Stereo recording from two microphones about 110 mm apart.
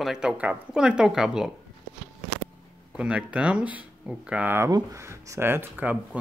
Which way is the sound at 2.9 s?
10° right (ahead or behind).